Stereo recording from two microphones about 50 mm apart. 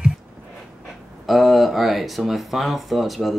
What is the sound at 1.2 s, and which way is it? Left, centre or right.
Speech, centre.